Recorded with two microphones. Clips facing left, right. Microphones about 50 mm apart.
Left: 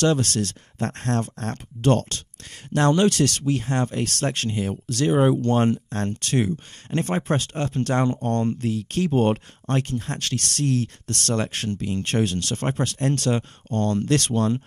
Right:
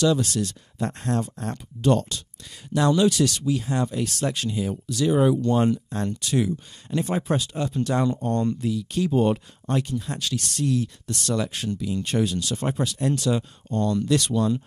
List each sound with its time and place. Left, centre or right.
0.0 s speech: left